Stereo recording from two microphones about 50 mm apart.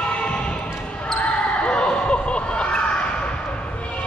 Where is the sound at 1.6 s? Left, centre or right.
Centre.